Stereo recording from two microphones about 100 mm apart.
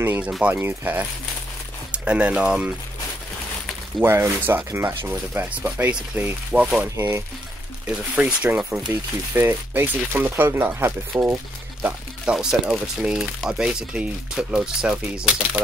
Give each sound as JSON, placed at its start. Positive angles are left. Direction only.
{"t": 0.0, "sound": "speech", "side_deg": -20}
{"t": 0.3, "sound": "speech", "side_deg": -10}
{"t": 4.0, "sound": "speech", "side_deg": -25}
{"t": 7.0, "sound": "speech", "side_deg": -25}
{"t": 8.2, "sound": "speech", "side_deg": -15}
{"t": 9.3, "sound": "speech", "side_deg": -25}
{"t": 11.8, "sound": "speech", "side_deg": -10}